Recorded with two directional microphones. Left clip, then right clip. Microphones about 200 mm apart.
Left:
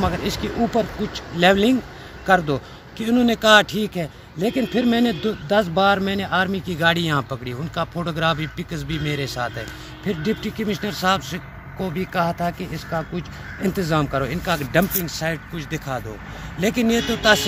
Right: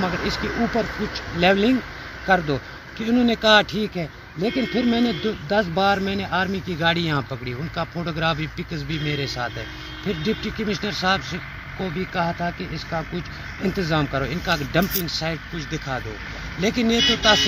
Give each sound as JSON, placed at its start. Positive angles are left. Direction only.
{"t": 0.0, "sound": "speech", "side_deg": 30}
{"t": 1.4, "sound": "a man's voice", "side_deg": 5}
{"t": 13.6, "sound": "speech", "side_deg": 10}
{"t": 16.5, "sound": "speech", "side_deg": 35}